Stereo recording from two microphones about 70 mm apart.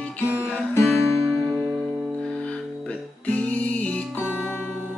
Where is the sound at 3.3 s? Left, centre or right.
Left.